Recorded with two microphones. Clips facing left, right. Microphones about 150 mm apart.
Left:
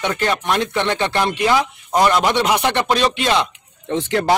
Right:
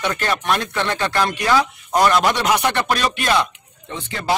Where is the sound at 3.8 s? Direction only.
75° left (ahead or behind).